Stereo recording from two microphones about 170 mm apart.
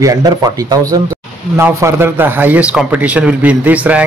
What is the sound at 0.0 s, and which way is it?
Speech, 20° right (ahead or behind).